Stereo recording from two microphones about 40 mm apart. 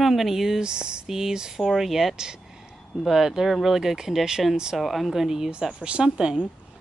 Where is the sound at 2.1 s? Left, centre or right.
Centre.